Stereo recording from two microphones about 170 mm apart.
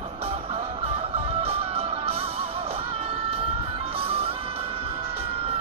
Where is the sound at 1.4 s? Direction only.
35° right (ahead or behind).